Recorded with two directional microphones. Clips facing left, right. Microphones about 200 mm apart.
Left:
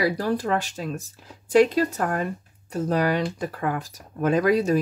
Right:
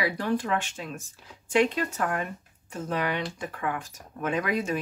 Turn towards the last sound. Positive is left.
turn(degrees=35)  # may be behind; listen again after turning